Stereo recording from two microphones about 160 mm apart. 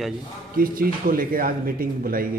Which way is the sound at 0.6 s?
65° right (ahead or behind).